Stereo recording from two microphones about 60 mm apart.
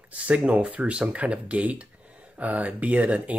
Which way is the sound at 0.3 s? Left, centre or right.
Right.